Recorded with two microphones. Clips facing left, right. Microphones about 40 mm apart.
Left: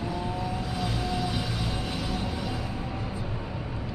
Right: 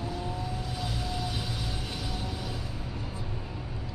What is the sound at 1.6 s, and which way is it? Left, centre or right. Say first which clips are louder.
Music: left 5 dB; left.